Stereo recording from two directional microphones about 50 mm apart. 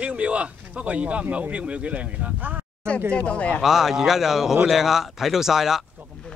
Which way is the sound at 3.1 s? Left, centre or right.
Left.